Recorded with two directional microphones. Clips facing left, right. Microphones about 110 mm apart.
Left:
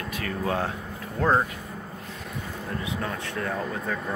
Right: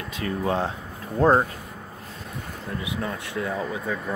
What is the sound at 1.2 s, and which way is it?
Speech, 35° right (ahead or behind).